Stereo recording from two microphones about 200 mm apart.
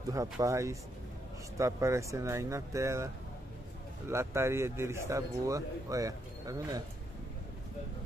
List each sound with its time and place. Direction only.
0.1 s a man's voice: 15° right (ahead or behind)
4.1 s a man's voice: 15° right (ahead or behind)